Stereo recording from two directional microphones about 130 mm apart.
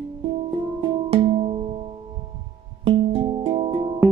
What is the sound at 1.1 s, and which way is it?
Music, 45° right (ahead or behind).